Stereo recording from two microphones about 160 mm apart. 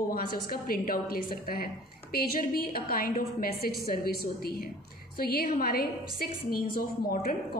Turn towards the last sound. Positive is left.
turn(degrees=60)  # may be behind; listen again after turning